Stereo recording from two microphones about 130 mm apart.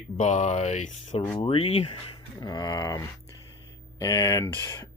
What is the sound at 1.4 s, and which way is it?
Speech, 45° left (ahead or behind).